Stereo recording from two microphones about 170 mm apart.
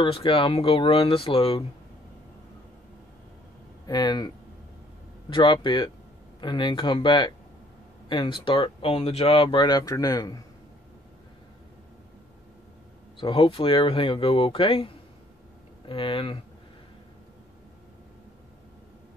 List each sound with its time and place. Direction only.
0.0 s speech: 30° left (ahead or behind)
3.8 s speech: 25° left (ahead or behind)
5.3 s speech: 25° left (ahead or behind)
13.2 s speech: 30° left (ahead or behind)
15.9 s speech: 30° left (ahead or behind)